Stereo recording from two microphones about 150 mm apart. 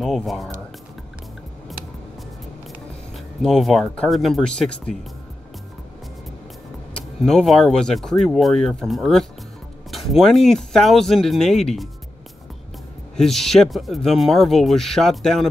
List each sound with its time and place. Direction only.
0.0 s speech: centre (ahead or behind)
3.1 s speech: centre (ahead or behind)
7.2 s speech: centre (ahead or behind)
13.1 s speech: centre (ahead or behind)